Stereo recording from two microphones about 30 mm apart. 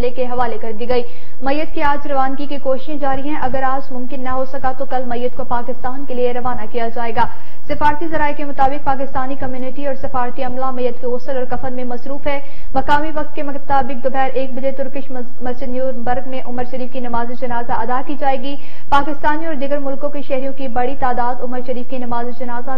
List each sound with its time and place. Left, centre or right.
0.0 s a woman's voice: centre